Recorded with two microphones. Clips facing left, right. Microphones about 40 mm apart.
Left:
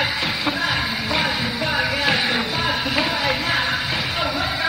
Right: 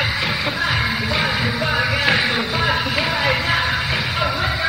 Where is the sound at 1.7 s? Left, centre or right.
Centre.